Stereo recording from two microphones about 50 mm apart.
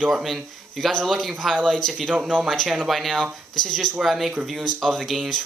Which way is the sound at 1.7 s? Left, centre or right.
Centre.